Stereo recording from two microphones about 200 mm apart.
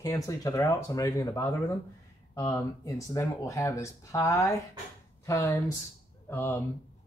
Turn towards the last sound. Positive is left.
turn(degrees=10)  # may be behind; listen again after turning